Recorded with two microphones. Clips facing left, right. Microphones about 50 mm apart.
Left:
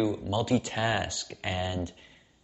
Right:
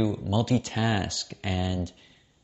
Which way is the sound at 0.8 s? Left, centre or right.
Centre.